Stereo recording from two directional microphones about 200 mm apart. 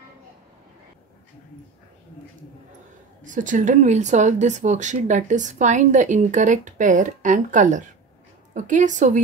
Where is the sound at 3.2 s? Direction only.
40° right (ahead or behind).